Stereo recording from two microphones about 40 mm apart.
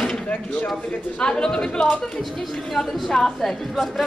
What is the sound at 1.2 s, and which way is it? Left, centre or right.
Speech, centre.